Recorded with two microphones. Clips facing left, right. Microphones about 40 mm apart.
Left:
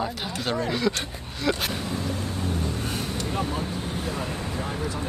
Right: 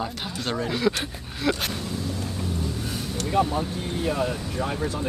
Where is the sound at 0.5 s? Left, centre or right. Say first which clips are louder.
Right 1 dB; centre.